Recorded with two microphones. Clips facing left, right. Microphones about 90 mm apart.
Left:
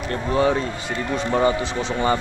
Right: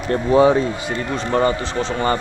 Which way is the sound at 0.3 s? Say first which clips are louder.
Right 6 dB; 20° right (ahead or behind).